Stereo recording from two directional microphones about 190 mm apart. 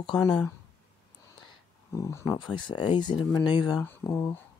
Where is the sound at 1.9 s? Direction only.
15° left (ahead or behind).